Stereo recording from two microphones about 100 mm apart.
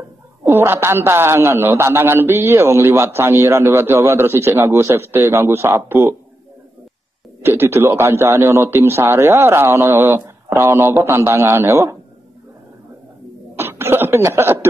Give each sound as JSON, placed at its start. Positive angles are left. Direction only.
{"t": 0.5, "sound": "a man's voice", "side_deg": -25}
{"t": 7.4, "sound": "a man's voice", "side_deg": -25}
{"t": 13.6, "sound": "speech", "side_deg": -25}